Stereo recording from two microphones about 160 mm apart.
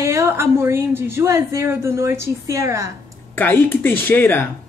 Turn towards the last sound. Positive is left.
turn(degrees=10)  # may be behind; listen again after turning